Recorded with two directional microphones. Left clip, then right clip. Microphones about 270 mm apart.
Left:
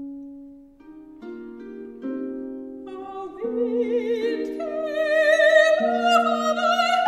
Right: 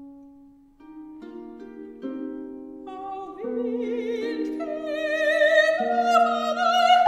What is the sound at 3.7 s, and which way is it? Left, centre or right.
Music, centre.